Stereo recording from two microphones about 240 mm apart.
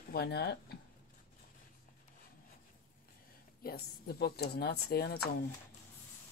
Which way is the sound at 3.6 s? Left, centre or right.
Left.